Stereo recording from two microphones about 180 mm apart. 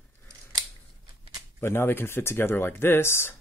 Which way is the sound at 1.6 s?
15° left (ahead or behind).